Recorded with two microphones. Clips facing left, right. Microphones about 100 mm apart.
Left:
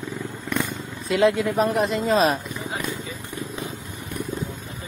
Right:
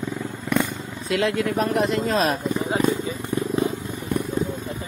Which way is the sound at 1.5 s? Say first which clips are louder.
Even; centre (ahead or behind).